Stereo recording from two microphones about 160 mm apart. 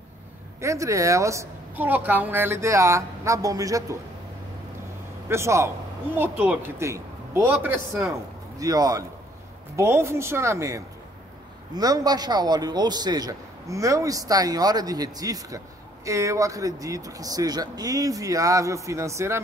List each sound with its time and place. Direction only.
0.6 s a man's voice: 20° right (ahead or behind)
5.3 s a man's voice: 15° right (ahead or behind)